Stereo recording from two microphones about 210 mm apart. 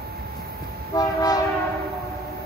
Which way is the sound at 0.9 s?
20° left (ahead or behind).